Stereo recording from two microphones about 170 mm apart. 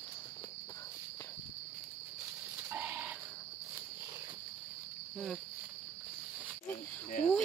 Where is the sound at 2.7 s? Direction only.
10° right (ahead or behind).